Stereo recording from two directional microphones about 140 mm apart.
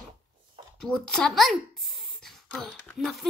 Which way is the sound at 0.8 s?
5° left (ahead or behind).